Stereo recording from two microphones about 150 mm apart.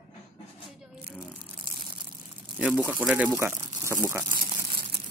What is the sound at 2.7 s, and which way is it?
Speech, 10° left (ahead or behind).